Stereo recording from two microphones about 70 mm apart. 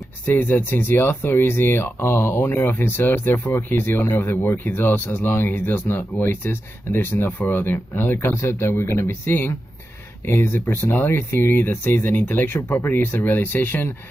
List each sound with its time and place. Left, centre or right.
0.4 s speech: left
9.2 s speech: left